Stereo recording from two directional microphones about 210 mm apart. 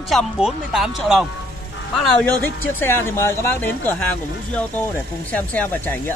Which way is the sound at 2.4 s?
10° left (ahead or behind).